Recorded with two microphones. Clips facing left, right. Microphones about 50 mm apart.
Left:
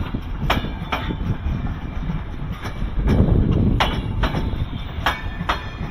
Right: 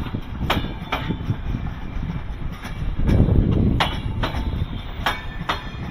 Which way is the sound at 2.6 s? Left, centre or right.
Left.